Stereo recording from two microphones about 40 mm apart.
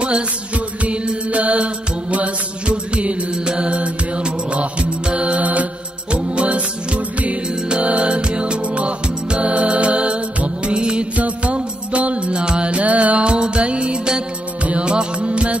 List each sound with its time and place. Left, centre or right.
0.8 s mantra: right
6.1 s music: right